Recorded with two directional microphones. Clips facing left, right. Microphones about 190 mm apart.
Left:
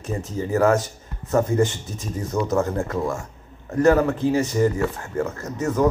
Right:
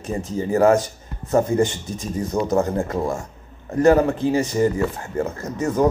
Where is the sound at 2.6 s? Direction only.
15° right (ahead or behind).